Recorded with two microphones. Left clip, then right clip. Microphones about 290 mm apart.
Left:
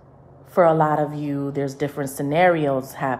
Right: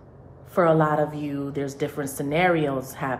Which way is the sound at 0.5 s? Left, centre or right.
Left.